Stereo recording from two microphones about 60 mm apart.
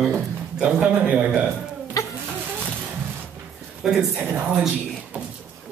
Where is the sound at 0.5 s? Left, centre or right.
Centre.